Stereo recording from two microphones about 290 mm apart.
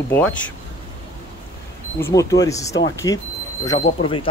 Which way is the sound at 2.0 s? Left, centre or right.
Centre.